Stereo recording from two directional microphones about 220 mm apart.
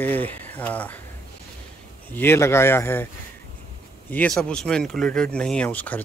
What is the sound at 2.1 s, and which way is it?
Speech, 10° left (ahead or behind).